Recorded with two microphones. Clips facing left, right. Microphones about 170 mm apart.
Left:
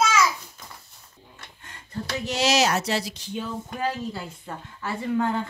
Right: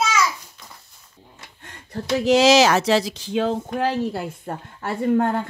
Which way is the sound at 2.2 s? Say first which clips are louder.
Right 8 dB; 90° right.